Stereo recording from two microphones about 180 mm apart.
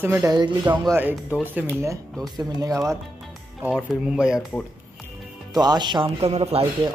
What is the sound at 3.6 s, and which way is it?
Speech, 5° right (ahead or behind).